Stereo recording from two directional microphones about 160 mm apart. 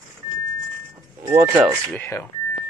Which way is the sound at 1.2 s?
20° right (ahead or behind).